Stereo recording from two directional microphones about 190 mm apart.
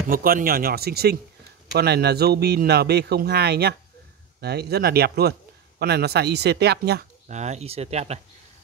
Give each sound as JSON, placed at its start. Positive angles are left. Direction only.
{"t": 0.1, "sound": "a man's voice", "side_deg": -50}
{"t": 7.2, "sound": "speech", "side_deg": -35}